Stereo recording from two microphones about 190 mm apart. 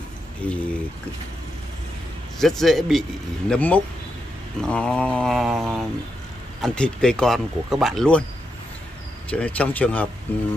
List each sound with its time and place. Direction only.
0.4 s speech: 5° left (ahead or behind)
2.3 s speech: centre (ahead or behind)
9.3 s speech: 5° left (ahead or behind)